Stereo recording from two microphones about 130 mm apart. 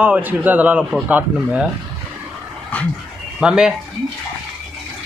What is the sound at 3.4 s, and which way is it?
Speech, 5° right (ahead or behind).